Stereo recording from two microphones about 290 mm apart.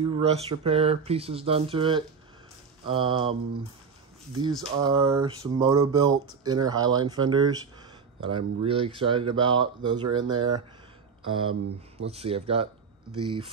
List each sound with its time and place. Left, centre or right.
0.0 s speech: centre
12.0 s speech: right